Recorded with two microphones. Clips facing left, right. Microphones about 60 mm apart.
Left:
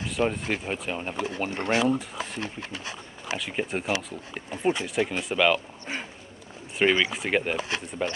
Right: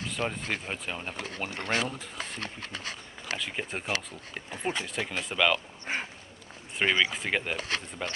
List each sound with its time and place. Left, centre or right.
0.2 s speech: centre
3.3 s speech: centre
5.9 s speech: right
6.8 s speech: centre
7.5 s speech: left